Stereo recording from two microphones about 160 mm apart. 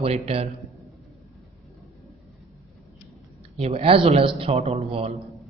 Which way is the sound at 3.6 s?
40° right (ahead or behind).